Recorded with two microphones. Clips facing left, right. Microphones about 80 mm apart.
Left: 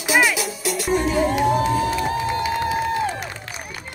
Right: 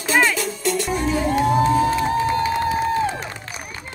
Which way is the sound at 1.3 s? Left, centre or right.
Right.